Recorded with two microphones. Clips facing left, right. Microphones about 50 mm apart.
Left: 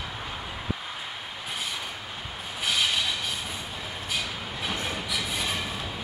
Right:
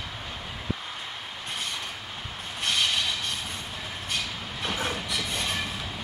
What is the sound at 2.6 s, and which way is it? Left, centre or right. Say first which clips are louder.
Train: even; centre.